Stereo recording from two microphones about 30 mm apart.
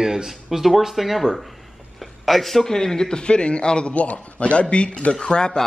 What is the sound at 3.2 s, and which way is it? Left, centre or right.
Speech, left.